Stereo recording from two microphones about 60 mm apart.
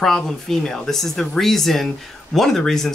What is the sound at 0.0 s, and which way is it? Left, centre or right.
Speech, centre.